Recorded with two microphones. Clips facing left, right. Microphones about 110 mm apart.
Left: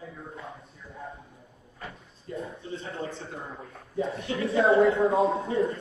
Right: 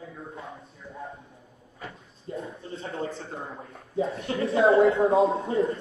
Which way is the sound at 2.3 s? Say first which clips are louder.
Even; 25° right (ahead or behind).